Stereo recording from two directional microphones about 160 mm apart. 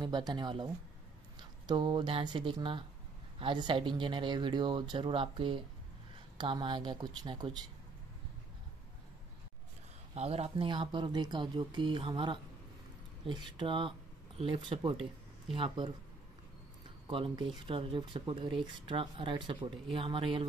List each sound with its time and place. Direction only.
0.0 s speech: 25° right (ahead or behind)
1.7 s speech: 30° right (ahead or behind)
10.1 s speech: 40° right (ahead or behind)
13.6 s speech: 30° right (ahead or behind)
17.1 s speech: 30° right (ahead or behind)